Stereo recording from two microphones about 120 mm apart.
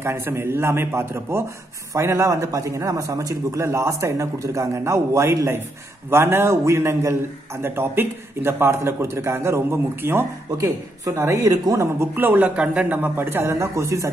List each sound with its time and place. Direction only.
0.0 s a man's voice: 20° right (ahead or behind)